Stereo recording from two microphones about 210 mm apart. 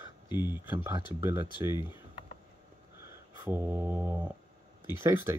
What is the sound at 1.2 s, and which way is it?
Speech, 10° right (ahead or behind).